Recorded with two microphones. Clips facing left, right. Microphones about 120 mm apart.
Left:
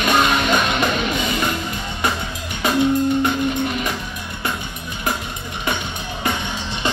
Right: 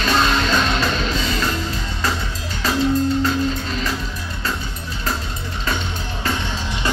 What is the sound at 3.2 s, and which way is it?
Music, 15° left (ahead or behind).